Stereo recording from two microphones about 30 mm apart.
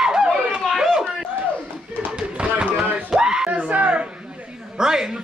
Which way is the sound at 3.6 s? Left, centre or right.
Right.